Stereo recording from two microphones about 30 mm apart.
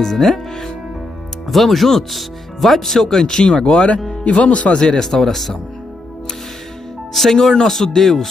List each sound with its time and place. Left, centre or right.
0.0 s speech: centre
1.5 s speech: centre; by 4.0 s left
4.4 s speech: left
4.7 s speech: left
5.0 s speech: centre
7.3 s speech: centre